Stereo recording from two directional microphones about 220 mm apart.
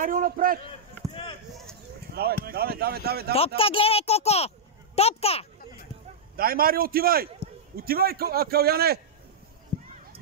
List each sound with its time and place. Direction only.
0.0 s a man's voice: 40° right (ahead or behind)
2.1 s a man's voice: 45° right (ahead or behind)
3.3 s speech: 25° left (ahead or behind)
6.3 s a man's voice: 40° right (ahead or behind)
9.7 s a sound: 10° left (ahead or behind)